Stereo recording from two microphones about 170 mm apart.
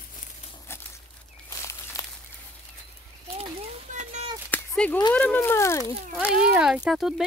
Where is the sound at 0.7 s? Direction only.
15° left (ahead or behind).